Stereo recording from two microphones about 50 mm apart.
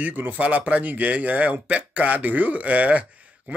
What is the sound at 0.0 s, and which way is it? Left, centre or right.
Speech, right.